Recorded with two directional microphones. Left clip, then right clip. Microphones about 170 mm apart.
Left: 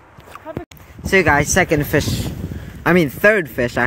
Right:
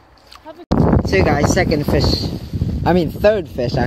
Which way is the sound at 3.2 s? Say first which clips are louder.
Even; 40° left (ahead or behind).